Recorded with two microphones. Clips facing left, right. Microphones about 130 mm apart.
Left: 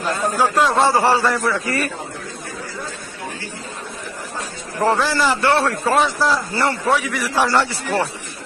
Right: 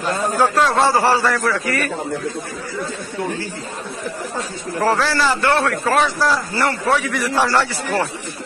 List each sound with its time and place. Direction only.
0.4 s a man's voice: 10° left (ahead or behind); by 1.9 s 30° left (ahead or behind)
4.7 s a man's voice: 15° left (ahead or behind)
6.9 s a man's voice: 10° left (ahead or behind)
7.3 s a man's voice: 20° left (ahead or behind)